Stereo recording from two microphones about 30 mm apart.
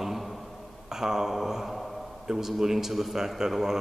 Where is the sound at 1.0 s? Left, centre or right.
Centre.